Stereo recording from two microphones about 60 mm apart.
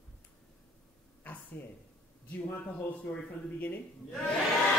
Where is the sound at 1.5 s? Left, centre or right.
Left.